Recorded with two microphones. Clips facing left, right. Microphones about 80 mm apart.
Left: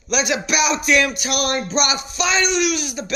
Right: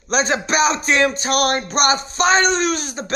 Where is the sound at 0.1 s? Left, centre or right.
Right.